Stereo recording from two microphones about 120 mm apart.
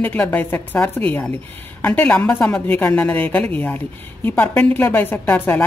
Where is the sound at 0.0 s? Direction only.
15° left (ahead or behind).